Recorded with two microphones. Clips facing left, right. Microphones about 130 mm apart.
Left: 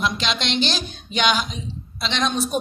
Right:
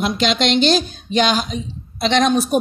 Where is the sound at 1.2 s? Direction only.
40° right (ahead or behind).